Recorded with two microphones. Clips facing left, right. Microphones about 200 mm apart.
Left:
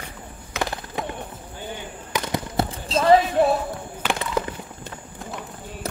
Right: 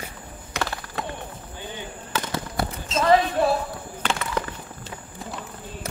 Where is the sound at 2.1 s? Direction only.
15° left (ahead or behind).